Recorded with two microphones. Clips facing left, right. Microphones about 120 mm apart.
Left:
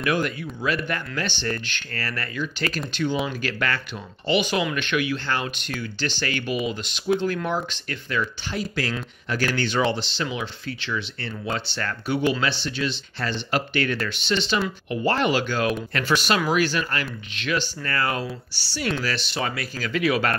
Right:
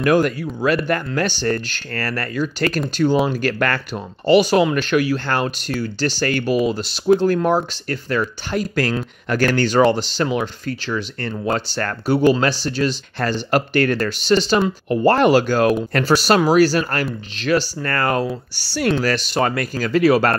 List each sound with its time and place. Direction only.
0.0 s speech: 45° right (ahead or behind)